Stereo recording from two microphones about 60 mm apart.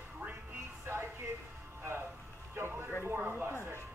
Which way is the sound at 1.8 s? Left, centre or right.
Right.